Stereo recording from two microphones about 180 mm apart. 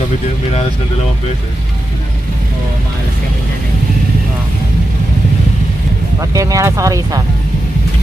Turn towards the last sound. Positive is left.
turn(degrees=-20)  # may be behind; listen again after turning